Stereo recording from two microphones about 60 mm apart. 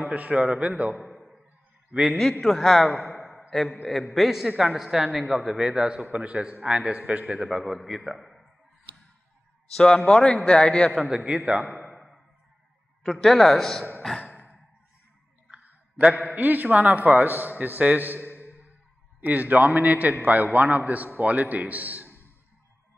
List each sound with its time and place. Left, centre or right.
0.0 s a man's voice: right
1.0 s a sound: centre
1.9 s a man's voice: centre
2.4 s a man's voice: centre
3.1 s a sound: centre
3.7 s a man's voice: centre; by 7.2 s right
7.4 s a man's voice: centre
9.8 s a man's voice: centre
10.9 s a man's voice: centre
11.8 s a sound: centre
13.0 s a man's voice: centre
15.5 s a man's voice: right